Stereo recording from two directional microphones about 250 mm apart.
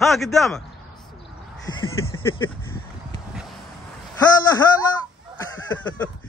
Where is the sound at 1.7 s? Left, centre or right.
Centre.